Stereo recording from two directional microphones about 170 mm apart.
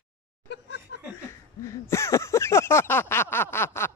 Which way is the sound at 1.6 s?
15° left (ahead or behind).